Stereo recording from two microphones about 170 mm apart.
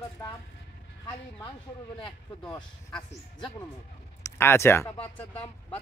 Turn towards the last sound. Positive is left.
turn(degrees=10)  # may be behind; listen again after turning